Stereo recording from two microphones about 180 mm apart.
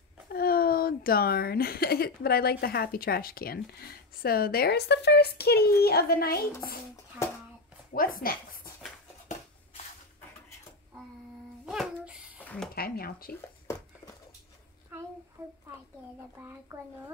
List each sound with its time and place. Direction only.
0.3 s a woman's voice: 55° left (ahead or behind)
7.9 s speech: 50° left (ahead or behind)
11.6 s a sound: centre (ahead or behind)
12.4 s a sound: 10° left (ahead or behind)
12.7 s speech: 55° left (ahead or behind)
15.4 s a child's voice: 15° right (ahead or behind)